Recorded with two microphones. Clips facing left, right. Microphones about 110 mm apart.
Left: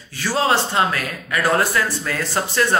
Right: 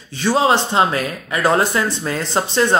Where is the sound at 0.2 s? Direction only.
20° right (ahead or behind).